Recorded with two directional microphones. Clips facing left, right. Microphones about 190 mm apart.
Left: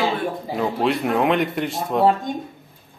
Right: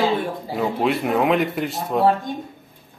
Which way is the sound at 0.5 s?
Centre (ahead or behind).